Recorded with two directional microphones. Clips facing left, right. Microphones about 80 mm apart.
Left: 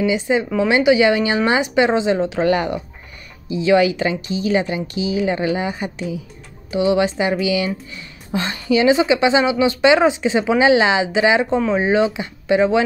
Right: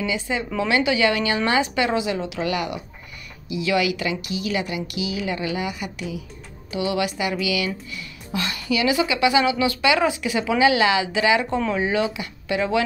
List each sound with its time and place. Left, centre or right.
0.0 s a woman's voice: left